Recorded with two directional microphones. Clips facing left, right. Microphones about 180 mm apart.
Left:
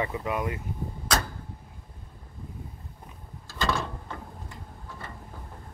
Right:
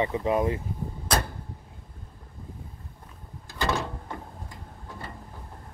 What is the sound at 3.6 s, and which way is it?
Mechanisms, 15° right (ahead or behind).